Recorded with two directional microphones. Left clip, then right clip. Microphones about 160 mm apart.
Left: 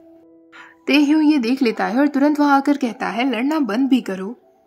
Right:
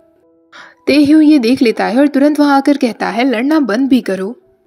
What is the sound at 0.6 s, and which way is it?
A woman's voice, 20° right (ahead or behind).